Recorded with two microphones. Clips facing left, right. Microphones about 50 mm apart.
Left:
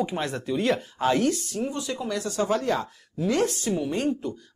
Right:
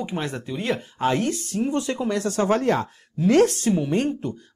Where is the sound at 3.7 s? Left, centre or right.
Right.